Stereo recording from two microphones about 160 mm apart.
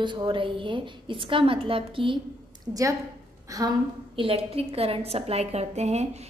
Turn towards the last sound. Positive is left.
turn(degrees=-45)  # may be behind; listen again after turning